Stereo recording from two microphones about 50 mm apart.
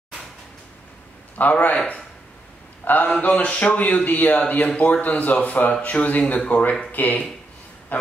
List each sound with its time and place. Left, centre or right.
1.4 s speech: left
2.8 s a man's voice: left